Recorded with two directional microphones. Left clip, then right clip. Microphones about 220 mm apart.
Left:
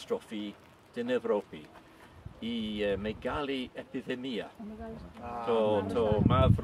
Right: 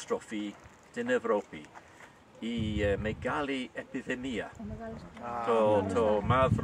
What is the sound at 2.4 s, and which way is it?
Speech, 15° left (ahead or behind).